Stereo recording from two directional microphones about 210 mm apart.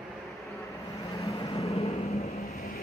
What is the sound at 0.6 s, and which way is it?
Vehicle, 15° left (ahead or behind).